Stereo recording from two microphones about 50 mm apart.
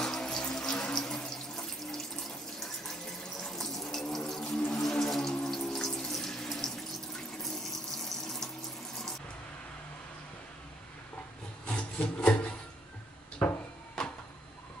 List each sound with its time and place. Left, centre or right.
0.0 s water tap: centre
11.6 s rub: left